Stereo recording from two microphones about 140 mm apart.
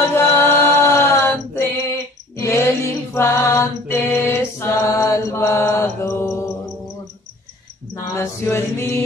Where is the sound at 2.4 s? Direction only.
20° left (ahead or behind).